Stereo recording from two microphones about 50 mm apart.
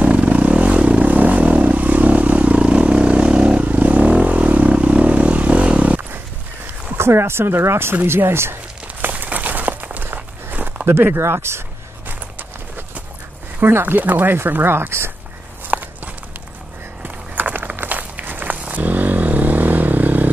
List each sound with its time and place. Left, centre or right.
0.0 s vehicle: right
7.0 s speech: right
9.0 s a sound: right
10.0 s walk: right
11.1 s speech: right
13.8 s speech: right
15.7 s walk: right
17.0 s walk: right